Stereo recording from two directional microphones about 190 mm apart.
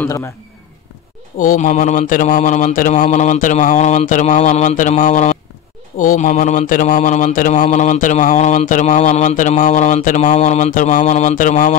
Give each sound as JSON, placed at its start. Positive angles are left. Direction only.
{"t": 0.0, "sound": "speech", "side_deg": 15}
{"t": 1.4, "sound": "mantra", "side_deg": 45}